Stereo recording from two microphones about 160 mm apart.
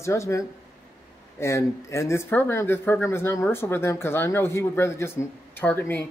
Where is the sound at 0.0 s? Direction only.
15° left (ahead or behind).